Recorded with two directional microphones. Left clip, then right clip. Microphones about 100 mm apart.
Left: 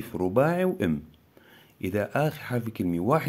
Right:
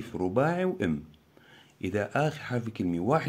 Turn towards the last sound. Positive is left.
turn(degrees=30)  # may be behind; listen again after turning